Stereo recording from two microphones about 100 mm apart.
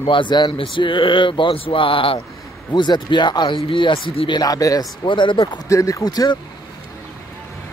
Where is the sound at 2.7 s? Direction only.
50° left (ahead or behind).